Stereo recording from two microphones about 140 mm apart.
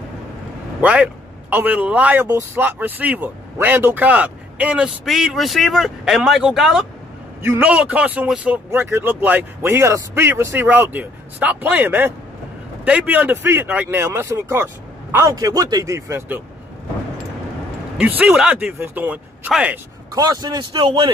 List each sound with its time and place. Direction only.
0.7 s a man's voice: 5° right (ahead or behind)
17.9 s speech: 10° right (ahead or behind)
20.2 s speech: 30° right (ahead or behind)